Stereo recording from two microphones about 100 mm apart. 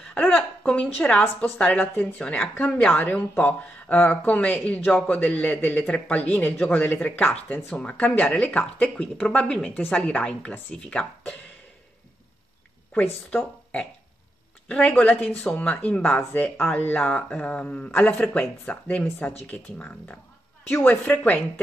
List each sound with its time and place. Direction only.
0.0 s a sound: 10° left (ahead or behind)
0.9 s speech: 10° left (ahead or behind)
12.9 s speech: 15° left (ahead or behind)
14.7 s speech: 10° left (ahead or behind)